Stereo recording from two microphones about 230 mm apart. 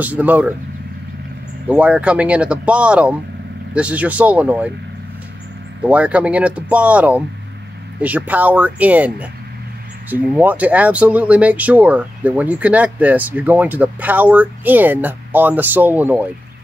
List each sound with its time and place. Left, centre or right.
0.0 s speech: centre
1.7 s speech: centre
5.9 s speech: centre